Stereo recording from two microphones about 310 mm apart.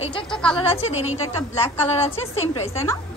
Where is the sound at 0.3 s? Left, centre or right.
Centre.